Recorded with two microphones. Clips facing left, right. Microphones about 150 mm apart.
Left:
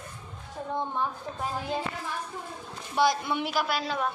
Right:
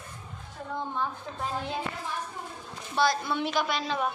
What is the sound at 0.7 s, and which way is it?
Speech, 20° left (ahead or behind).